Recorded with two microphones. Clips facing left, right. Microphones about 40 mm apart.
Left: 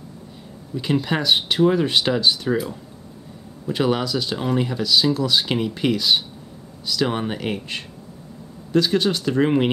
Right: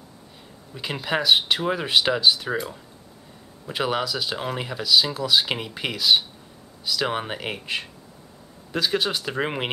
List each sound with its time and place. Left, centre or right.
0.7 s speech: centre